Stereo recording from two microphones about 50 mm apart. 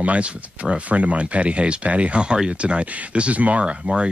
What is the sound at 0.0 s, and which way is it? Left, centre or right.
Speech, right.